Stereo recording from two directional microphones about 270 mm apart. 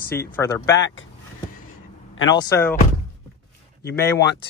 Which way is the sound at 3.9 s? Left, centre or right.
Centre.